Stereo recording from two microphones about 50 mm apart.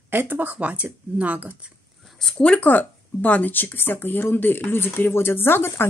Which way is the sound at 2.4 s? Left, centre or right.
Left.